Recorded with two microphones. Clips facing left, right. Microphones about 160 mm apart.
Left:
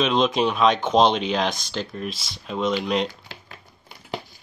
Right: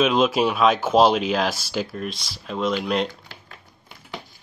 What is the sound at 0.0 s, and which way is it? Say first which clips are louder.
Speech: right 2 dB; 5° right (ahead or behind).